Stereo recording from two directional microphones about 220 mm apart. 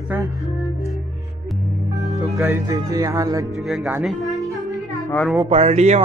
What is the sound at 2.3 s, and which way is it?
Speech, 10° right (ahead or behind).